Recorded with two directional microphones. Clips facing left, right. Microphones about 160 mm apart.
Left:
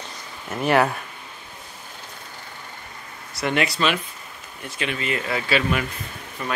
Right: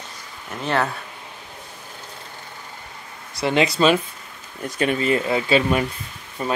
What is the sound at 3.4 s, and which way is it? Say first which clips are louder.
Speech: right 4 dB; 25° right (ahead or behind).